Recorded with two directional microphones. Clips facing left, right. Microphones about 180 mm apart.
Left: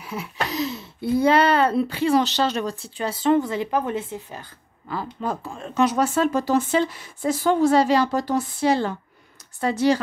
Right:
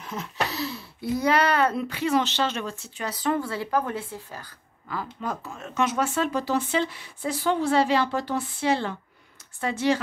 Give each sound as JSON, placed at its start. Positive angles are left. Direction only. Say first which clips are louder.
{"t": 0.0, "sound": "a child's voice", "louder": "left 1 dB", "side_deg": 10}